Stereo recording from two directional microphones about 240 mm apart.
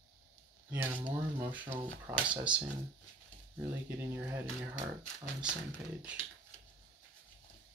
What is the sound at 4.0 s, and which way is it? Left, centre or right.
Speech, centre.